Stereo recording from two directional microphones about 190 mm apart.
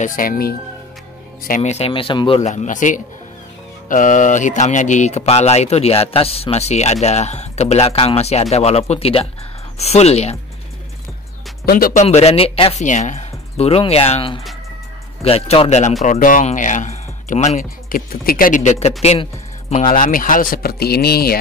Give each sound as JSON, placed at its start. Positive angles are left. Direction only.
{"t": 0.0, "sound": "speech", "side_deg": 45}
{"t": 11.6, "sound": "speech", "side_deg": 50}
{"t": 12.0, "sound": "speech", "side_deg": 35}
{"t": 19.7, "sound": "speech", "side_deg": 45}